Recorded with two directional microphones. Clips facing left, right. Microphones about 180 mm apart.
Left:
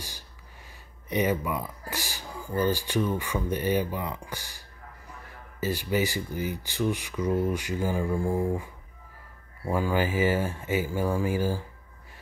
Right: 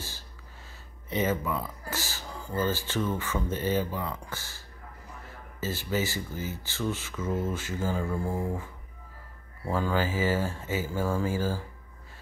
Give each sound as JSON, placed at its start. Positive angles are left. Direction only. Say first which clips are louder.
{"t": 1.1, "sound": "speech", "louder": "left 2 dB", "side_deg": 15}
{"t": 9.7, "sound": "speech", "louder": "left 2 dB", "side_deg": 10}